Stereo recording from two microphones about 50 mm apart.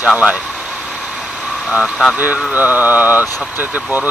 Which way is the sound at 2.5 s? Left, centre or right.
Right.